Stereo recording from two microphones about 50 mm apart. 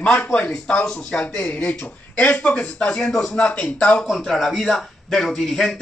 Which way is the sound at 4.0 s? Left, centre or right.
Centre.